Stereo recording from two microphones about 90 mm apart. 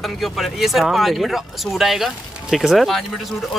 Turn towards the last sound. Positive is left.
turn(degrees=0)  # may be behind; listen again after turning